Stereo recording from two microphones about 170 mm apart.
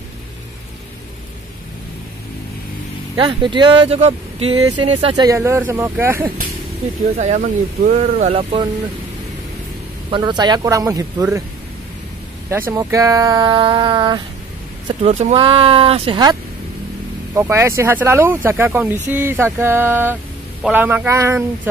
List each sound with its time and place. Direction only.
3.3 s speech: 25° right (ahead or behind)
7.2 s speech: 45° right (ahead or behind)
10.1 s speech: 25° right (ahead or behind)
12.4 s speech: 15° right (ahead or behind)
15.0 s speech: 40° right (ahead or behind)
17.3 s speech: 15° right (ahead or behind)